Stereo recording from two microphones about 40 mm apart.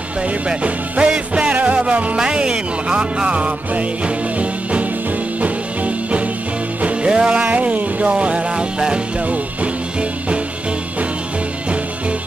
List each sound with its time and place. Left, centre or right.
0.5 s music: right
2.1 s speech: right
5.4 s music: right
7.1 s music: right
7.4 s music: right